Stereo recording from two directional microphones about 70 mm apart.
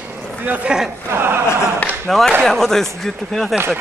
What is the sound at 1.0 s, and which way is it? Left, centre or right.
Speech, right.